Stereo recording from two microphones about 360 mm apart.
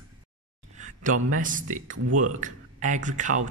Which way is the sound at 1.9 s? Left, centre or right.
Right.